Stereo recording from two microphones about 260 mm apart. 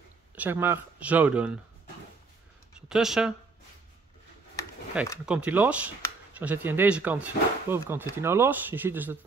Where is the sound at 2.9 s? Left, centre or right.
Centre.